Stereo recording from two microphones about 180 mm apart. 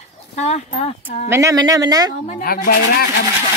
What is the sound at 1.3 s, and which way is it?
Speech, 20° right (ahead or behind).